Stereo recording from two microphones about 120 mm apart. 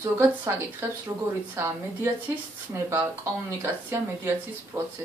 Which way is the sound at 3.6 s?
20° right (ahead or behind).